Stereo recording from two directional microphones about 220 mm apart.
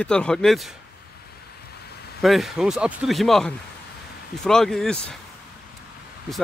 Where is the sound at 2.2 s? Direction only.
Centre (ahead or behind).